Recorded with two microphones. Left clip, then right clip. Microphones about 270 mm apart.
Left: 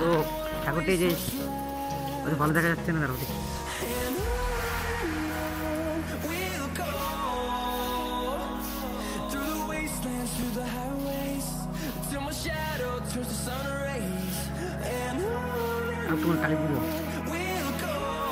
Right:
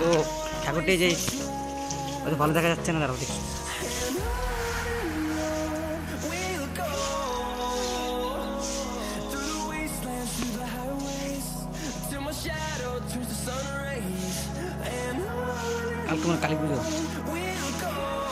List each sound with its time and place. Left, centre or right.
0.0 s music: centre
2.2 s speech: centre
16.1 s music: centre